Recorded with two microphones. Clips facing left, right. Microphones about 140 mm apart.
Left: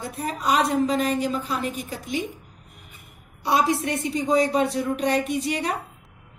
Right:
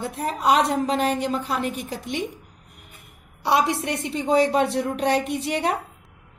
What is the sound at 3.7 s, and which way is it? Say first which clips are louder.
Speech: left 1 dB; 25° right (ahead or behind).